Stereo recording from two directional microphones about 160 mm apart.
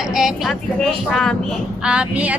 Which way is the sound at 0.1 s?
Centre (ahead or behind).